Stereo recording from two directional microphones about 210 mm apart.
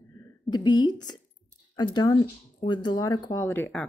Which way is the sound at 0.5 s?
20° left (ahead or behind).